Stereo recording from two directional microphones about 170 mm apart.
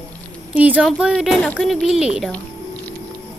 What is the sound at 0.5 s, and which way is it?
Speech, 10° right (ahead or behind).